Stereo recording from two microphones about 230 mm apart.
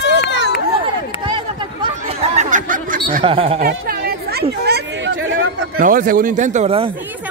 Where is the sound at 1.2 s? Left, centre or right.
Right.